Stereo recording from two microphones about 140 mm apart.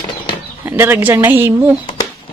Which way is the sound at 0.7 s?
15° right (ahead or behind).